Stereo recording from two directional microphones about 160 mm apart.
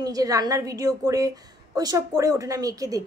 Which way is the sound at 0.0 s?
20° right (ahead or behind).